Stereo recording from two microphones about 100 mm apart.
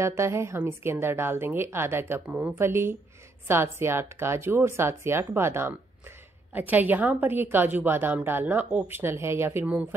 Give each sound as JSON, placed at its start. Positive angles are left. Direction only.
{"t": 0.0, "sound": "a woman's voice", "side_deg": -30}
{"t": 2.6, "sound": "a woman's voice", "side_deg": -25}